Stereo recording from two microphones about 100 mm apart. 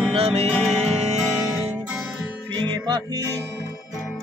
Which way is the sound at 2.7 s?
45° right (ahead or behind).